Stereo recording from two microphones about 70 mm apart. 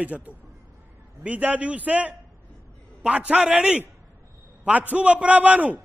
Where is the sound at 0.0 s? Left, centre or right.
Right.